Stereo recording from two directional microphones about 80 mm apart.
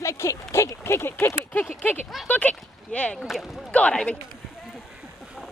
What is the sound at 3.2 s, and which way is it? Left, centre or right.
Speech, centre.